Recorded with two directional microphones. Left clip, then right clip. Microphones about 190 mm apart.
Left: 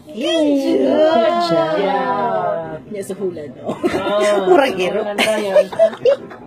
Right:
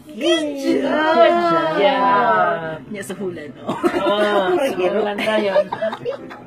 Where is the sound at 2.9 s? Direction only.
Centre (ahead or behind).